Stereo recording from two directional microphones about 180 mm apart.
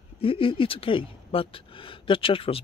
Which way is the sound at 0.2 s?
30° left (ahead or behind).